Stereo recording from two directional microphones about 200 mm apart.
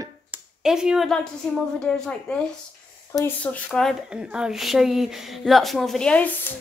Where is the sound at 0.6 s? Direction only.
5° right (ahead or behind).